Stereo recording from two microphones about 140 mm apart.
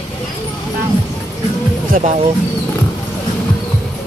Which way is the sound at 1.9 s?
60° right (ahead or behind).